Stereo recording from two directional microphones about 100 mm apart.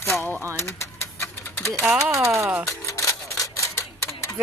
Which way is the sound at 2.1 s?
30° right (ahead or behind).